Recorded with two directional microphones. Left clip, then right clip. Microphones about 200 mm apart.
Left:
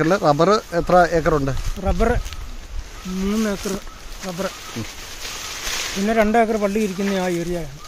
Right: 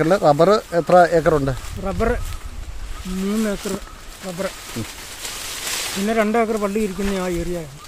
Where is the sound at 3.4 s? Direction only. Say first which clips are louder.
Even; centre (ahead or behind).